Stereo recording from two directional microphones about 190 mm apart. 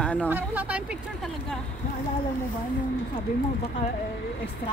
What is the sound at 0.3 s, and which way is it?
Speech, 10° right (ahead or behind).